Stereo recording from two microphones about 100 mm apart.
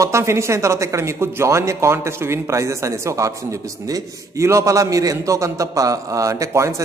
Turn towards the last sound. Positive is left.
turn(degrees=-30)  # may be behind; listen again after turning